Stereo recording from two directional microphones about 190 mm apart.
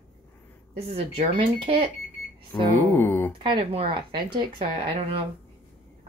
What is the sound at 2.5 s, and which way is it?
Speech, 10° left (ahead or behind).